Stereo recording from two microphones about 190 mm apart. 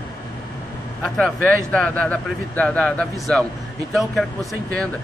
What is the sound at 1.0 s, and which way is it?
Speech, 5° left (ahead or behind).